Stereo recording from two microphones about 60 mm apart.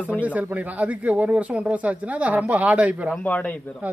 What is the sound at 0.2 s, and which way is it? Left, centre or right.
Speech, right.